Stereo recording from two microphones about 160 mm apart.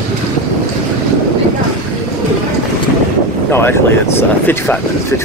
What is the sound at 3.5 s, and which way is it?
Speech, 15° left (ahead or behind).